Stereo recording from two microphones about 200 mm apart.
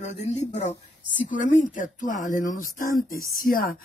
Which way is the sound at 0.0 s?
35° left (ahead or behind).